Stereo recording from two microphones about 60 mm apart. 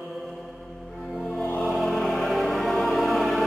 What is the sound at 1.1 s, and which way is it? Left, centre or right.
Music, centre.